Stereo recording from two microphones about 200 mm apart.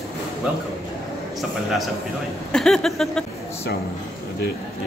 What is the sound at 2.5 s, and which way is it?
Speech, 5° left (ahead or behind).